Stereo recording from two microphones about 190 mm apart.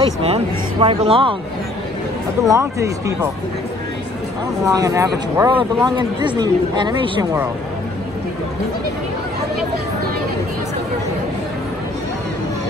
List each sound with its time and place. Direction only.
0.0 s speech: 30° right (ahead or behind)
2.4 s speech: 15° right (ahead or behind)
4.6 s speech: 15° right (ahead or behind)